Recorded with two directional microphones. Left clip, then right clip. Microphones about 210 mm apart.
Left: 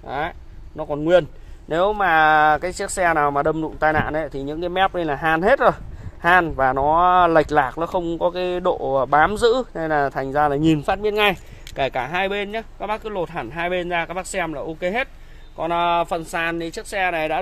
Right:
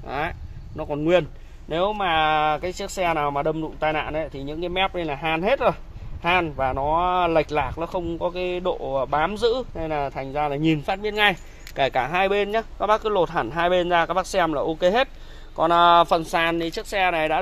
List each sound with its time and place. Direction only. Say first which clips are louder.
0.0 s a sound: left 2 dB; 10° left (ahead or behind)
1.7 s speech: left 4 dB; 30° left (ahead or behind)
11.7 s speech: right 1 dB; 10° left (ahead or behind)